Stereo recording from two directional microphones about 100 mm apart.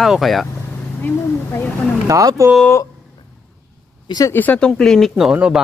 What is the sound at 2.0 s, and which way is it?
Speech, 35° right (ahead or behind).